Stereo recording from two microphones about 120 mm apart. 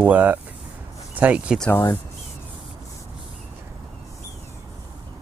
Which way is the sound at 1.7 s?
20° left (ahead or behind).